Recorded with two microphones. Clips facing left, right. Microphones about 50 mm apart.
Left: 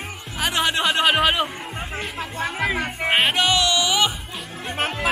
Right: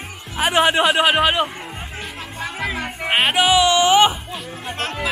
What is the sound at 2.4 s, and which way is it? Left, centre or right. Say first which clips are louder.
Music: left 2 dB; centre.